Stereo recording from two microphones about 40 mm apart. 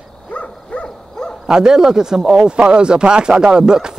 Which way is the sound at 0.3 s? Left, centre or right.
Left.